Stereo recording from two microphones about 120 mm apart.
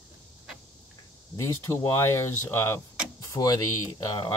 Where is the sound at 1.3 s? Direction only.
25° left (ahead or behind).